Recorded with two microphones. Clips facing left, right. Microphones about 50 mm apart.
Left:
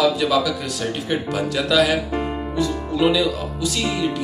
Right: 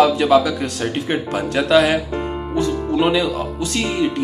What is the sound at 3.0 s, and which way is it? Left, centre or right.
Speech, right.